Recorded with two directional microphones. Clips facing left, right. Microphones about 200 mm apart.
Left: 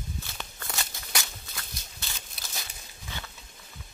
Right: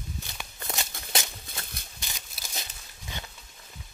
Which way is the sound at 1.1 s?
25° right (ahead or behind).